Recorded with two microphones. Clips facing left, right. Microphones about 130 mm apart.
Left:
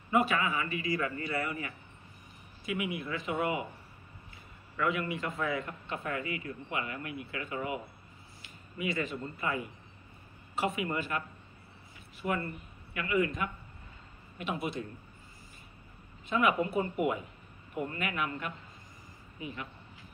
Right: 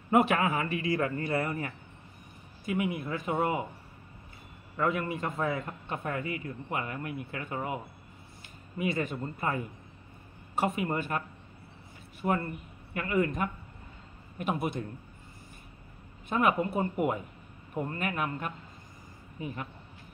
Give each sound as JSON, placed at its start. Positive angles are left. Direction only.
{"t": 0.1, "sound": "a man's voice", "side_deg": -60}
{"t": 4.7, "sound": "a man's voice", "side_deg": -40}
{"t": 16.3, "sound": "a man's voice", "side_deg": -45}